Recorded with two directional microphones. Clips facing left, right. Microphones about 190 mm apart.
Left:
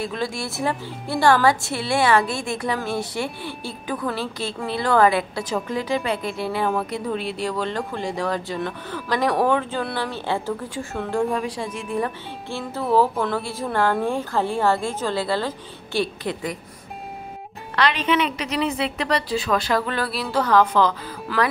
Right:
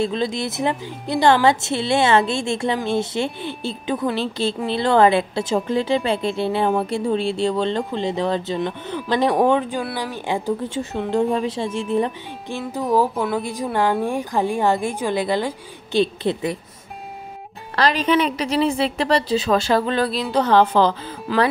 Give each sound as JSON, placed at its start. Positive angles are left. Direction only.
{"t": 0.0, "sound": "a woman's voice", "side_deg": -25}
{"t": 17.7, "sound": "speech", "side_deg": -35}